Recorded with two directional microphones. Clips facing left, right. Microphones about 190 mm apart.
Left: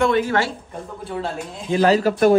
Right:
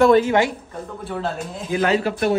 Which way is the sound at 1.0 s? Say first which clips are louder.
Right 1 dB; centre (ahead or behind).